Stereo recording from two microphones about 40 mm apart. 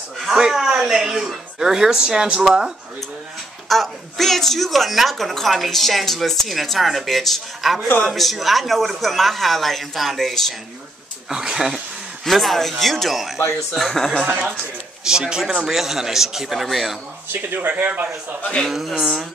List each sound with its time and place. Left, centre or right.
0.2 s speech: centre
3.6 s a woman's voice: centre
11.2 s speech: centre
12.3 s a woman's voice: centre
15.0 s a woman's voice: centre
17.3 s speech: right
18.7 s a woman's voice: centre